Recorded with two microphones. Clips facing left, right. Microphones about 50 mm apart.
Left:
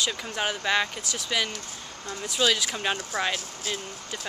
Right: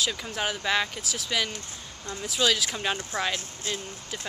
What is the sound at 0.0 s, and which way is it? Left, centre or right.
Speech, centre.